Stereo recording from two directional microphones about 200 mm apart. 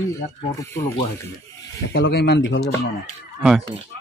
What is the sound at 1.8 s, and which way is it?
Speech, 60° left (ahead or behind).